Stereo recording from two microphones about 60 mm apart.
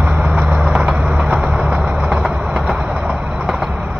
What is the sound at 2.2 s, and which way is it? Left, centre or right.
Train, right.